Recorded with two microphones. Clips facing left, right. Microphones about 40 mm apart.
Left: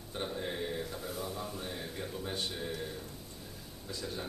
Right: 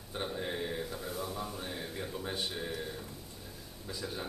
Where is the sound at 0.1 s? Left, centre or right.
Centre.